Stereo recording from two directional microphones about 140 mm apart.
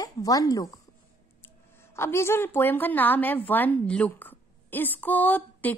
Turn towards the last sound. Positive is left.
turn(degrees=10)  # may be behind; listen again after turning